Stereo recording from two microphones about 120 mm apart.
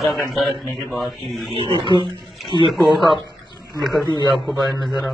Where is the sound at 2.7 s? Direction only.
Centre (ahead or behind).